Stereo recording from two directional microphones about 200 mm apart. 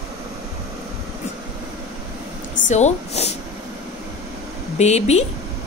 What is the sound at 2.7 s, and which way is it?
Speech, 35° left (ahead or behind).